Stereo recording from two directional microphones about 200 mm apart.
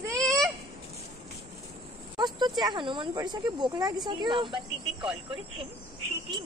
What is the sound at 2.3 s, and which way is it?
Speech, 20° right (ahead or behind).